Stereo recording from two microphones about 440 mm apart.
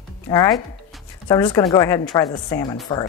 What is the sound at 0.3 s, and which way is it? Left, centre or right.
Speech, centre.